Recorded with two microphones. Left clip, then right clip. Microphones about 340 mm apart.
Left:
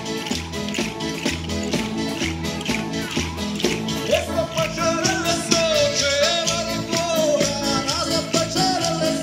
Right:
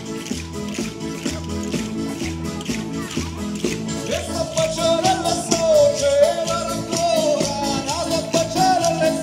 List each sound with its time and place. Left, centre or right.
4.7 s music: centre; by 9.2 s right